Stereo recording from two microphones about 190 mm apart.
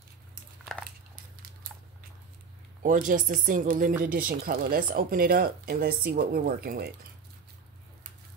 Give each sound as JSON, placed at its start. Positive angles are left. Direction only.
{"t": 2.8, "sound": "speech", "side_deg": -45}